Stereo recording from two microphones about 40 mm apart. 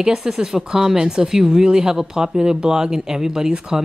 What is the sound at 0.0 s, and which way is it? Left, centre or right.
Speech, centre.